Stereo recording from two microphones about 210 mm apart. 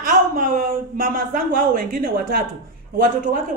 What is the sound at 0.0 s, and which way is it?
A man's voice, 40° right (ahead or behind).